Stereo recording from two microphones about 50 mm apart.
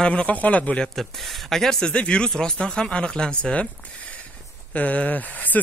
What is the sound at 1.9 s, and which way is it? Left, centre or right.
Speech, left.